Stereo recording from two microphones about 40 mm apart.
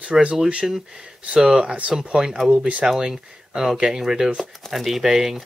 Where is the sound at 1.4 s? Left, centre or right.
Centre.